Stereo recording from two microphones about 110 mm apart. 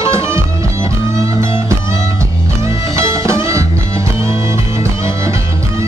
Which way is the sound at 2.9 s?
25° right (ahead or behind).